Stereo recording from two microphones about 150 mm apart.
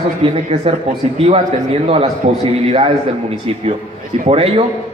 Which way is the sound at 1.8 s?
40° right (ahead or behind).